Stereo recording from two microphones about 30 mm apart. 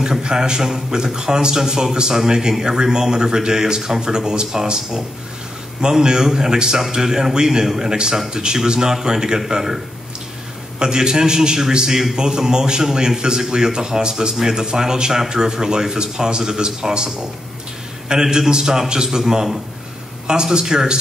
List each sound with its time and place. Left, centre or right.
0.0 s speech: right
10.8 s speech: right